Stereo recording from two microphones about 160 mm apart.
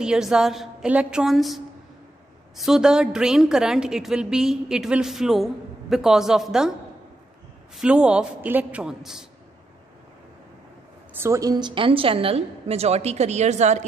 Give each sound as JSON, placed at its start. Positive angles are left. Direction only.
{"t": 0.0, "sound": "a woman's voice", "side_deg": -5}
{"t": 7.7, "sound": "a woman's voice", "side_deg": -5}
{"t": 11.1, "sound": "a woman's voice", "side_deg": -20}